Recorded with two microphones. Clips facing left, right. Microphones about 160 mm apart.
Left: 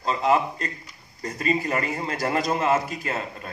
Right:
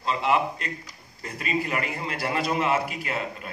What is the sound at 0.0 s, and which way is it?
A man's voice, 40° left (ahead or behind).